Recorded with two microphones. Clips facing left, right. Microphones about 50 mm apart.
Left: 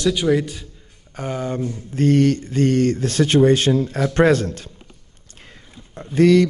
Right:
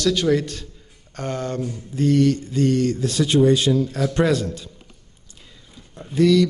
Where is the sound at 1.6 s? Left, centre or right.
Left.